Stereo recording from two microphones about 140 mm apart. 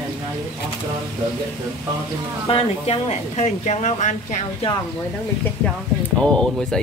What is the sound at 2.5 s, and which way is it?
Speech, 50° left (ahead or behind).